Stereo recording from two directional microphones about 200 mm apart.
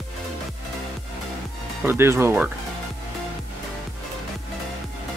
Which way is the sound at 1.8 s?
10° right (ahead or behind).